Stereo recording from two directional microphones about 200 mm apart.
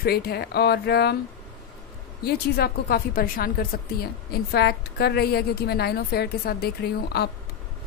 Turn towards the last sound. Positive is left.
turn(degrees=50)  # may be behind; listen again after turning